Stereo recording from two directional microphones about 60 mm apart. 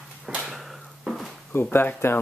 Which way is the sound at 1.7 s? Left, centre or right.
Left.